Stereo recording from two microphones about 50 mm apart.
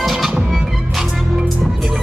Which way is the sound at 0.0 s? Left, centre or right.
Centre.